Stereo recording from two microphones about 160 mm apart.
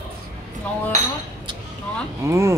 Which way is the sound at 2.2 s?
20° right (ahead or behind).